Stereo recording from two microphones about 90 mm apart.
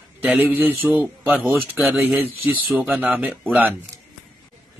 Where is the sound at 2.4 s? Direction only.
10° right (ahead or behind).